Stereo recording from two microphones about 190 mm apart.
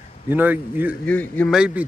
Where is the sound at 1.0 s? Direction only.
5° left (ahead or behind).